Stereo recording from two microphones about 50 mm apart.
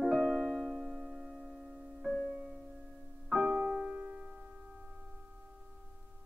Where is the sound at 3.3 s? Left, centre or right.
Right.